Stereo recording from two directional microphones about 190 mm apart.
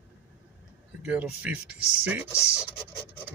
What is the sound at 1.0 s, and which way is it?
Speech, 5° right (ahead or behind).